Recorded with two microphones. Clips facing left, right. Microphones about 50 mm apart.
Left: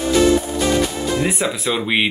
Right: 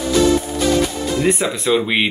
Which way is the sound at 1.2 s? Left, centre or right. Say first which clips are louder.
Right 3 dB; centre.